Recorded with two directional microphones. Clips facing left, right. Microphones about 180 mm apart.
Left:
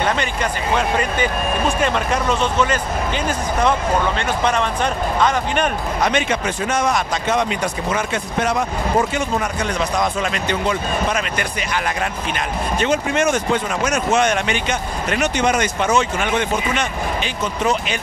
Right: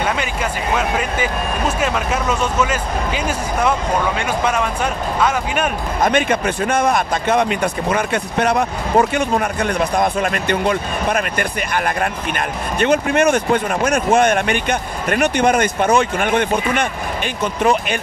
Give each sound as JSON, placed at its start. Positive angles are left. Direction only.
{"t": 0.0, "sound": "speech", "side_deg": -5}
{"t": 5.9, "sound": "speech", "side_deg": -50}